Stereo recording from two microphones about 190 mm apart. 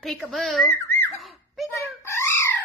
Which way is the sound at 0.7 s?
10° left (ahead or behind).